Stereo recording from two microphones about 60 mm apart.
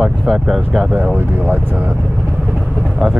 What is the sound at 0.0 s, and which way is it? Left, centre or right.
Speech, centre.